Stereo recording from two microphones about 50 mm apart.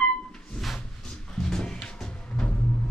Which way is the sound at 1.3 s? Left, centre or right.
Centre.